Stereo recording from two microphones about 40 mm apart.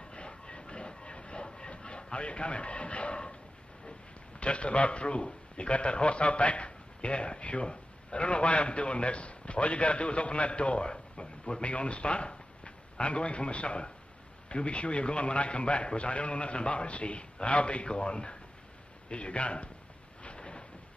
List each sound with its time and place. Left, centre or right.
0.1 s train: left
4.4 s a man's voice: left
20.2 s thunder: left